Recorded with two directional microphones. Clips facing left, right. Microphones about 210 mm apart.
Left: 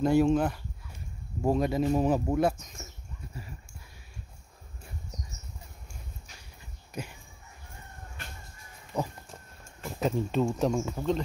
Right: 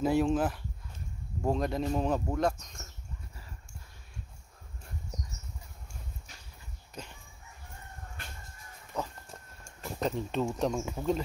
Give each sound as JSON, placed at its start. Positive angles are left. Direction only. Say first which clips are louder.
{"t": 0.0, "sound": "speech", "louder": "left 3 dB", "side_deg": 0}
{"t": 6.9, "sound": "dog", "louder": "left 6 dB", "side_deg": 10}
{"t": 8.9, "sound": "speech", "louder": "left 4 dB", "side_deg": 10}